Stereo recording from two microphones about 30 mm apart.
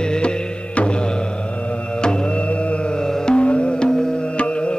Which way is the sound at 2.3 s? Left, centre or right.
Left.